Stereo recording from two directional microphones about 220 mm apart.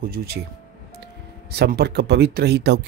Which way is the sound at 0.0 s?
45° right (ahead or behind).